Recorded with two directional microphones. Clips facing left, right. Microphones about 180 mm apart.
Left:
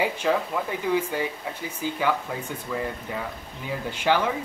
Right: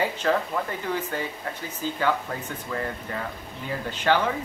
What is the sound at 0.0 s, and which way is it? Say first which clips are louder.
Speech: even; 10° left (ahead or behind).